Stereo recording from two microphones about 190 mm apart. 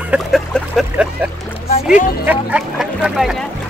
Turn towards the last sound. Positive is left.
turn(degrees=0)  # may be behind; listen again after turning